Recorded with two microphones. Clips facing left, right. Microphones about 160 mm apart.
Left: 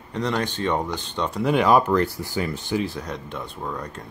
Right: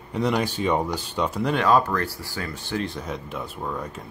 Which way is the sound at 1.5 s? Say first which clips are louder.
Left 4 dB; 15° left (ahead or behind).